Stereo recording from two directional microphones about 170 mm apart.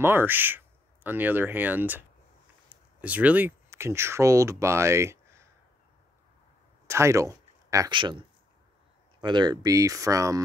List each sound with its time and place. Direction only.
0.0 s speech: 10° right (ahead or behind)
6.9 s speech: 15° right (ahead or behind)